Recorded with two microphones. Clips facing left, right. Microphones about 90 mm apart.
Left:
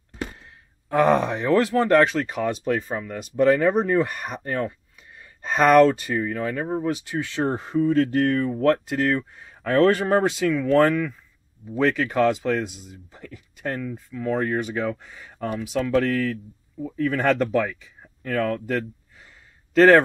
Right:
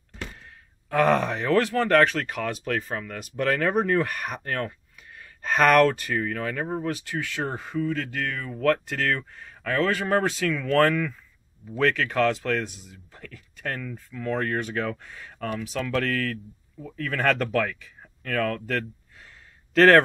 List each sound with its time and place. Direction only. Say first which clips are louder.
1.0 s speech: left 2 dB; 15° left (ahead or behind)
6.9 s speech: left 3 dB; 20° left (ahead or behind)
9.7 s speech: left 6 dB; 35° left (ahead or behind)
10.1 s a man's voice: left 4 dB; 15° left (ahead or behind)